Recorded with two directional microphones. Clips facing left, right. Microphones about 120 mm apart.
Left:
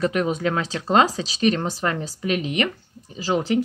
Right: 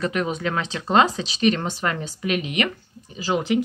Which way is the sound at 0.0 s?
40° left (ahead or behind).